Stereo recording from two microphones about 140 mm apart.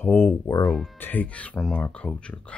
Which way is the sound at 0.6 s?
Centre (ahead or behind).